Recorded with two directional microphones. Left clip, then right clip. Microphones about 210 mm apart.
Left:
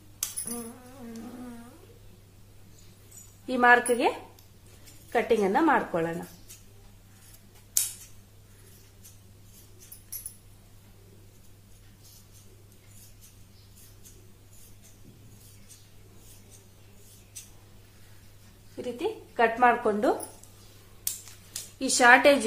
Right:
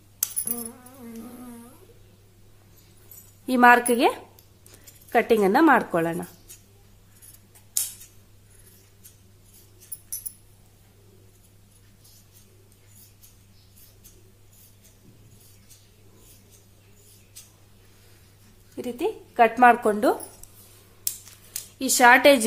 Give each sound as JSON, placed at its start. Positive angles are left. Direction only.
{"t": 3.4, "sound": "a woman's voice", "side_deg": -50}
{"t": 5.1, "sound": "a woman's voice", "side_deg": -55}
{"t": 18.8, "sound": "a sound", "side_deg": -55}
{"t": 21.7, "sound": "speech", "side_deg": -35}